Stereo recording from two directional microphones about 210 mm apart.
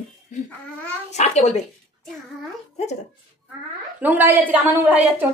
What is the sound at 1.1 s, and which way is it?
Speech, 35° left (ahead or behind).